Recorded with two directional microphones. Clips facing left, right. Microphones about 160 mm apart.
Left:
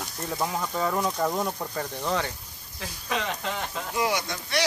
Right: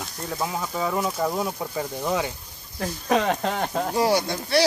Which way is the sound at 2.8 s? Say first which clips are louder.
Right 8 dB; 50° right (ahead or behind).